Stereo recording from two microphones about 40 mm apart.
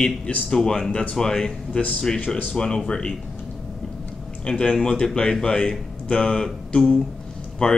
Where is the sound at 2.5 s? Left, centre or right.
Left.